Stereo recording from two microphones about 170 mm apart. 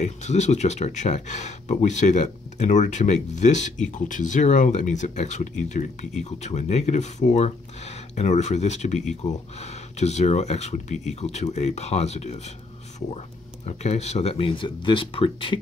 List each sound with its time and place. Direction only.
0.0 s speech: 40° left (ahead or behind)
13.7 s speech: 40° left (ahead or behind)